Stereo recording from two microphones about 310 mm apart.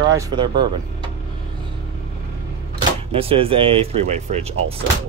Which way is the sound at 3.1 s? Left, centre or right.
Centre.